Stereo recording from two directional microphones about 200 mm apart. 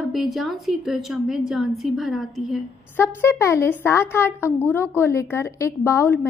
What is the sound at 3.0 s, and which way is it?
A woman's voice, 10° left (ahead or behind).